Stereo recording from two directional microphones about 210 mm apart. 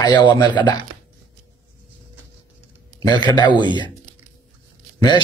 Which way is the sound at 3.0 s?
20° left (ahead or behind).